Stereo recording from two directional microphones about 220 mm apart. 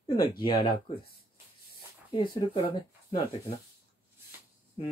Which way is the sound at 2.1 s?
25° left (ahead or behind).